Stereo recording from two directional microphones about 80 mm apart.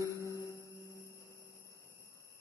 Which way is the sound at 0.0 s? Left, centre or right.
Left.